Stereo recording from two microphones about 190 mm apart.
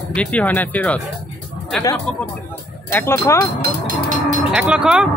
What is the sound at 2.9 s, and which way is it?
Speech, 10° left (ahead or behind).